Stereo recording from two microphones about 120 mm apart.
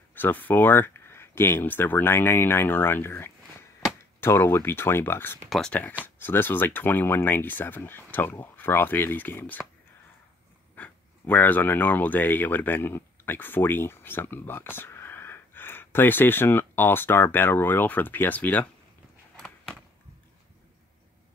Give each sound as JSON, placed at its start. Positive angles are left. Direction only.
{"t": 0.1, "sound": "speech", "side_deg": 15}
{"t": 5.5, "sound": "speech", "side_deg": 5}
{"t": 10.8, "sound": "speech", "side_deg": 15}
{"t": 19.4, "sound": "a sound", "side_deg": 5}